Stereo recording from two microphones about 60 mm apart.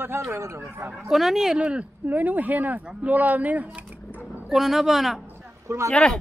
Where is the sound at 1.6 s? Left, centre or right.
Centre.